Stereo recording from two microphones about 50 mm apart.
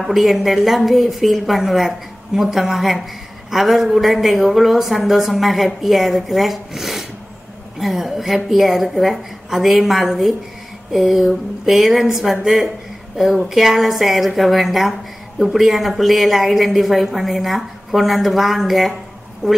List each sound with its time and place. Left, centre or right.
0.0 s a woman's voice: centre
19.4 s speech: centre